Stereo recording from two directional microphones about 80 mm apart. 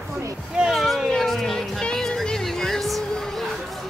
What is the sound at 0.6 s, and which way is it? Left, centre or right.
Music, centre.